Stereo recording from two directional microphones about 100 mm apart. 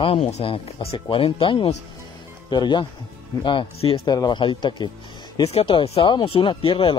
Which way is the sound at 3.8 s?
80° left.